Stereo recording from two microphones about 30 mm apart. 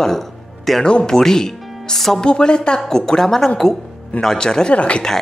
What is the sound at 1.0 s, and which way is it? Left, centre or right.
Speech, centre.